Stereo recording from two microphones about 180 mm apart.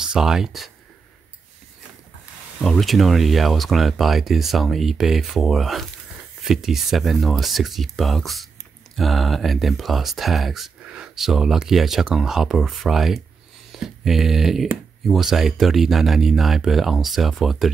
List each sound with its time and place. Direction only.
0.0 s speech: 5° right (ahead or behind)
2.6 s speech: centre (ahead or behind)